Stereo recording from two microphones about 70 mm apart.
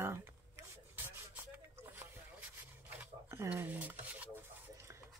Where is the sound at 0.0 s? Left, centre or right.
Right.